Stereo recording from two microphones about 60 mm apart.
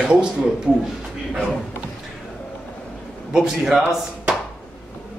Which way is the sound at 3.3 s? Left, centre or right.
Centre.